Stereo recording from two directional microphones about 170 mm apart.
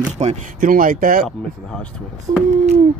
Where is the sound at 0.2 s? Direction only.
45° right (ahead or behind).